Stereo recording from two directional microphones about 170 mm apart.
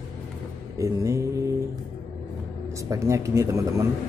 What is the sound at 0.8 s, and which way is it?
Speech, 20° right (ahead or behind).